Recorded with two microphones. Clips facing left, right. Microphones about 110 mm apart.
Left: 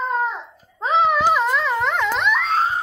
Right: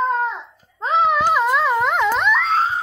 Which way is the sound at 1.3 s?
10° right (ahead or behind).